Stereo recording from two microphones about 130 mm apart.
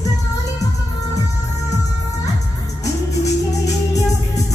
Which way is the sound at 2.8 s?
25° left (ahead or behind).